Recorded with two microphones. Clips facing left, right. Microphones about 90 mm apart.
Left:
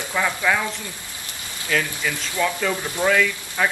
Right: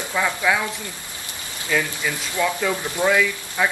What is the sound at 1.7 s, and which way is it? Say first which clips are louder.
Speech: right 1 dB; 10° right (ahead or behind).